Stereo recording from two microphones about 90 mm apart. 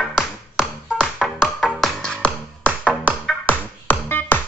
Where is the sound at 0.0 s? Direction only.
5° right (ahead or behind).